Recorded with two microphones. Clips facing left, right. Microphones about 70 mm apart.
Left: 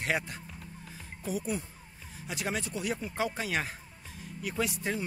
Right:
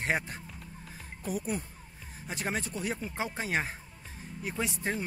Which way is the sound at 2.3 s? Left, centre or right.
Right.